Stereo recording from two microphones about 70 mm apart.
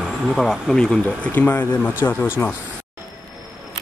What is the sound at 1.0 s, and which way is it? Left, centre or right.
Speech, left.